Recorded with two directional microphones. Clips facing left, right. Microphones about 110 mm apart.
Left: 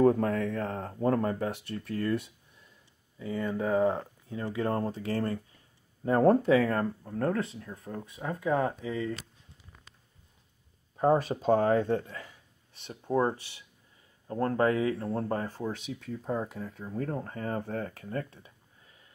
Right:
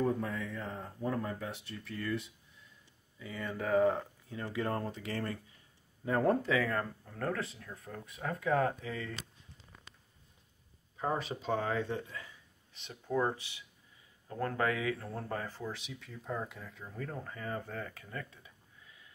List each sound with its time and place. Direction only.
0.0 s speech: 65° left (ahead or behind)
3.2 s speech: 30° left (ahead or behind)
11.0 s speech: 45° left (ahead or behind)
13.1 s speech: 35° left (ahead or behind)
15.8 s speech: 45° left (ahead or behind)